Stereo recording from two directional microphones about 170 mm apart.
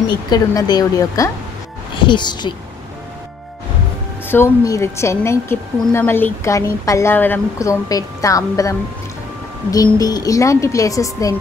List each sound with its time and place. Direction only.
0.3 s speech: 25° left (ahead or behind)
4.3 s a woman's voice: 15° left (ahead or behind)
9.9 s speech: 20° left (ahead or behind)